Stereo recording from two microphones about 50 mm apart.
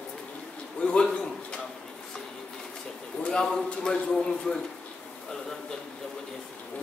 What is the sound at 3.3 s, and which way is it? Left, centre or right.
A man's voice, centre.